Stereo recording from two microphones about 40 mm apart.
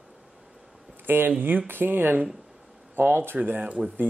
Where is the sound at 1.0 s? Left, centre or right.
Right.